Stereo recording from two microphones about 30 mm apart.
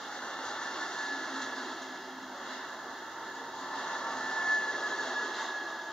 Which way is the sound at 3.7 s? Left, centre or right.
Centre.